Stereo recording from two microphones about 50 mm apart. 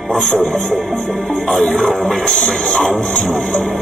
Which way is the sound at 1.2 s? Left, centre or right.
Centre.